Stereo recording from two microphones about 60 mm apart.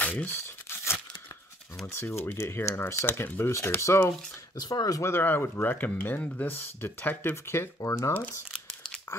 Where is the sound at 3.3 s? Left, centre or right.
Left.